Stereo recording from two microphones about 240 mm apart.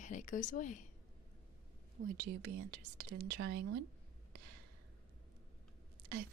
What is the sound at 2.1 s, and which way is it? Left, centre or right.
Speech, right.